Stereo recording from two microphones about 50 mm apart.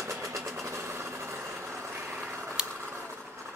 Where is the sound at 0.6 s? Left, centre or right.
Right.